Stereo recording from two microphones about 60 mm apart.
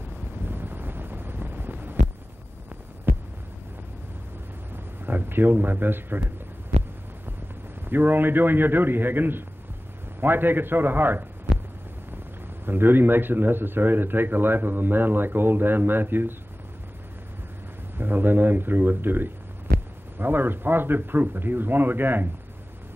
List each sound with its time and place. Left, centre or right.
0.2 s wind noise: right
4.7 s a man's voice: right
7.8 s speech: right
11.5 s heart sounds: centre
12.6 s speech: right
17.9 s speech: right